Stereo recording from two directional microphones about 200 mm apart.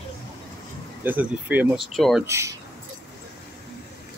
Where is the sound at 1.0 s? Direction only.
10° right (ahead or behind).